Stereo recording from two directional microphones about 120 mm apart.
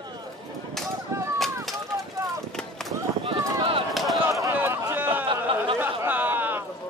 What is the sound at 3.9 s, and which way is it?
Chop, centre (ahead or behind).